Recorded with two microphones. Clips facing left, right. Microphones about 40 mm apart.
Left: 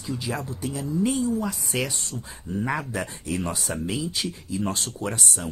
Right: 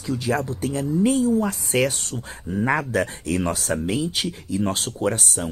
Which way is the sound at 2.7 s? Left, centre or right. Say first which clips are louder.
Right 8 dB; right.